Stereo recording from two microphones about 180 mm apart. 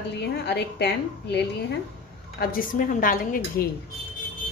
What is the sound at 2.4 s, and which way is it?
A woman's voice, 50° left (ahead or behind).